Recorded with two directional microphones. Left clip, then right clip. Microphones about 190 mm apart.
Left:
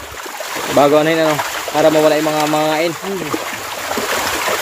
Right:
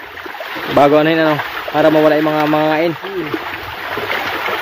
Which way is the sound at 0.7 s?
15° right (ahead or behind).